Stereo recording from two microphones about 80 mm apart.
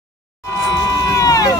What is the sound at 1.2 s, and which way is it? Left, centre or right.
Vehicle, left.